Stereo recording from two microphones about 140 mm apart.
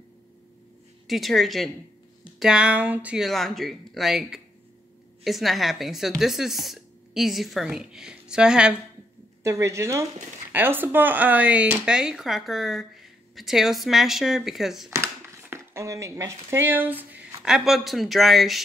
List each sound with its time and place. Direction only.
1.0 s speech: centre (ahead or behind)
3.3 s speech: centre (ahead or behind)
9.4 s speech: 20° right (ahead or behind); by 14.9 s centre (ahead or behind)
14.9 s speech: 20° right (ahead or behind); by 18.6 s centre (ahead or behind)